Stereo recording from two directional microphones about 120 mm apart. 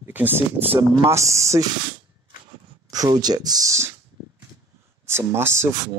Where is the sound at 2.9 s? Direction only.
35° right (ahead or behind).